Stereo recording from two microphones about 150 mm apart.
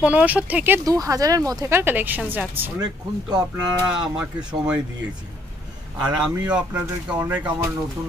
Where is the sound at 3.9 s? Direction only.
5° right (ahead or behind).